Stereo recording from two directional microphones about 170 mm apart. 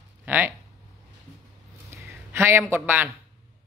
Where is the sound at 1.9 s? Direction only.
15° right (ahead or behind).